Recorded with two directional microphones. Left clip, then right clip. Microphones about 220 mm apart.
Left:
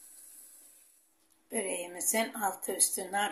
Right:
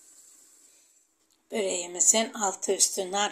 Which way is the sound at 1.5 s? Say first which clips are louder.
Right 6 dB; 20° right (ahead or behind).